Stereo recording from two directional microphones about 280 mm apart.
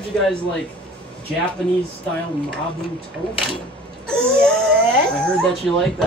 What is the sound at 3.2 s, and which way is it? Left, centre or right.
Speech, centre.